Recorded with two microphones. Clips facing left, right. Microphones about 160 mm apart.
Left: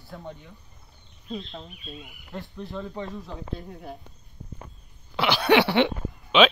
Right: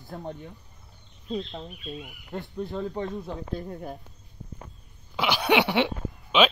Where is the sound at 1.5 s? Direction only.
20° right (ahead or behind).